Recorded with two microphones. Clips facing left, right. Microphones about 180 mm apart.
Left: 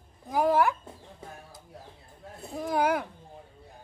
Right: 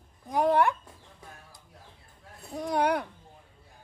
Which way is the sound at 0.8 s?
25° left (ahead or behind).